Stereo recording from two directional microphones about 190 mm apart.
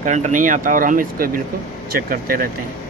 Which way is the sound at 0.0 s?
40° right (ahead or behind).